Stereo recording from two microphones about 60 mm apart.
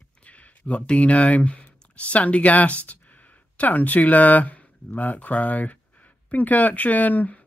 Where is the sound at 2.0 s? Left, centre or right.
Left.